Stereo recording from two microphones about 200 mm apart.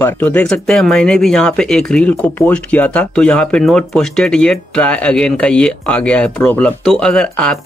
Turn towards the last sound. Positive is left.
turn(degrees=5)  # may be behind; listen again after turning